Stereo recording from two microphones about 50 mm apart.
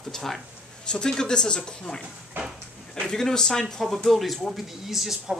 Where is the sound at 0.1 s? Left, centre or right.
Centre.